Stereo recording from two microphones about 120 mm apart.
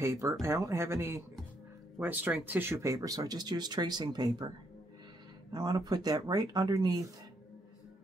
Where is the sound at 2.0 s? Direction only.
15° right (ahead or behind); by 4.5 s 35° right (ahead or behind).